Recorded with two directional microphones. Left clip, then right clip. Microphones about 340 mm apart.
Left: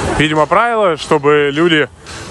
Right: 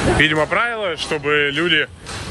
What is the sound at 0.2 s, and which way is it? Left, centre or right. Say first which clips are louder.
Speech: left 7 dB; centre.